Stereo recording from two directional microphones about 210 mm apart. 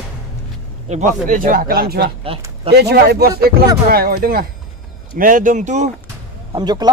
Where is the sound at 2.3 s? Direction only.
25° right (ahead or behind).